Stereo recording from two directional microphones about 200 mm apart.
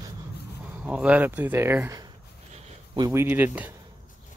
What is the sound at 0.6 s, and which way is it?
Speech, 5° right (ahead or behind).